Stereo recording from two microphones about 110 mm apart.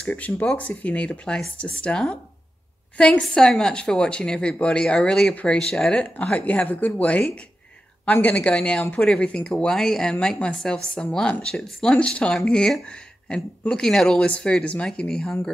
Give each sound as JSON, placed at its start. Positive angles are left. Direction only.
{"t": 0.1, "sound": "speech", "side_deg": 15}